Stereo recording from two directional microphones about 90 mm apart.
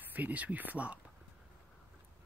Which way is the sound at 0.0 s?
20° right (ahead or behind).